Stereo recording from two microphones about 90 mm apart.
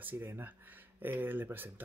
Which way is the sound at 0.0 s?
25° right (ahead or behind).